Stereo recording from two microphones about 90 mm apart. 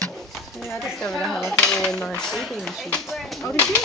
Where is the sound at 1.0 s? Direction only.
5° left (ahead or behind).